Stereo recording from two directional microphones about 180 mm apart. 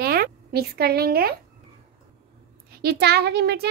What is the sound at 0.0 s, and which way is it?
Speech, 60° right (ahead or behind).